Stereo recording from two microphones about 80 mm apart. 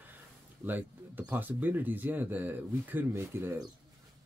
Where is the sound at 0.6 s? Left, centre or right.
Right.